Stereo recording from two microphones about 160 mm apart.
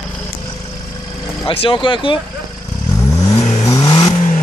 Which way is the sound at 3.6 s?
25° left (ahead or behind).